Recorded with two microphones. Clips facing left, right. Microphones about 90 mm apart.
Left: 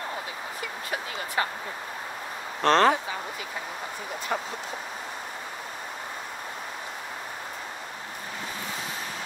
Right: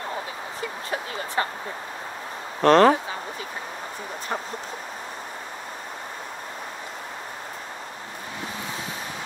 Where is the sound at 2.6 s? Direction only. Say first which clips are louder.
Right 5 dB; 35° right (ahead or behind).